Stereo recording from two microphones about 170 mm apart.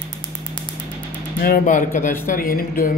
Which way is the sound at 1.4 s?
55° left (ahead or behind).